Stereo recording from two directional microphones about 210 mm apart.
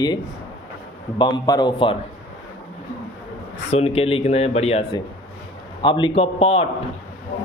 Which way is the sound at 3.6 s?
30° left (ahead or behind).